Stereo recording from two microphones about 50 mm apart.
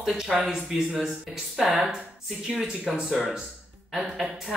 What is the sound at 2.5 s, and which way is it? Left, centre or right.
Speech, centre.